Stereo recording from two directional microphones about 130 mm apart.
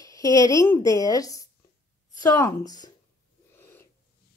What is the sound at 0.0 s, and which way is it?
Speech, 25° left (ahead or behind).